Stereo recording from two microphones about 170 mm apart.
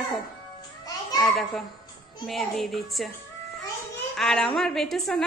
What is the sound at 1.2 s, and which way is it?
A child's voice, centre (ahead or behind).